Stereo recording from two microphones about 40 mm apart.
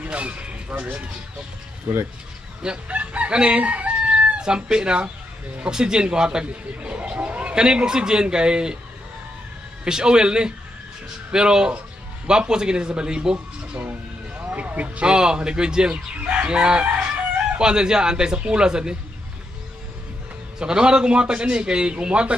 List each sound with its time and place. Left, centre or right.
0.0 s a sound: right
1.9 s speech: right
2.9 s chicken: right
4.4 s a man's voice: centre
6.4 s speech: right
7.5 s a man's voice: right
9.8 s a man's voice: centre
14.3 s music: right
15.0 s a man's voice: right
16.8 s crowing: right
17.6 s a man's voice: centre
20.5 s a man's voice: centre